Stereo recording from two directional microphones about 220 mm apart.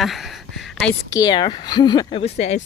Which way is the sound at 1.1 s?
20° left (ahead or behind).